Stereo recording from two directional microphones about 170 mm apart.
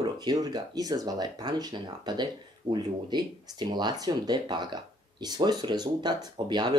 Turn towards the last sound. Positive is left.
turn(degrees=-25)  # may be behind; listen again after turning